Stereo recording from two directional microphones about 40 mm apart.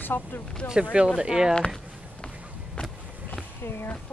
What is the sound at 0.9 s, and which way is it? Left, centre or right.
Speech, right.